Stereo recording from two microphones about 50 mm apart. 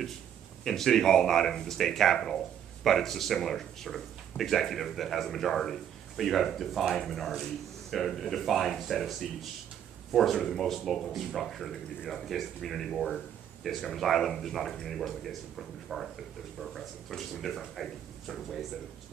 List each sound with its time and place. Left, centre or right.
0.7 s speech: centre